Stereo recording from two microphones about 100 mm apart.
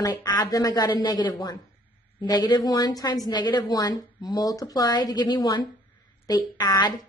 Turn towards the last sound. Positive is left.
turn(degrees=40)  # may be behind; listen again after turning